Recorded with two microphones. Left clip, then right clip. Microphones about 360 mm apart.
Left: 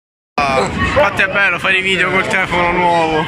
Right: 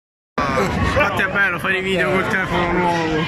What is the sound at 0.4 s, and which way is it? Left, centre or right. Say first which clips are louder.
Speech: left 5 dB; centre.